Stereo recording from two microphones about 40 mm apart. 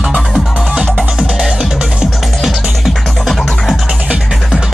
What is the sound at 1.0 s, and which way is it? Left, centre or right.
Music, right.